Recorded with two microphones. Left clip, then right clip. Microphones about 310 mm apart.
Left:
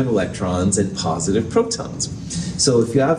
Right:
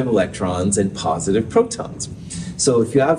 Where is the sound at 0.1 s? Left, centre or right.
Right.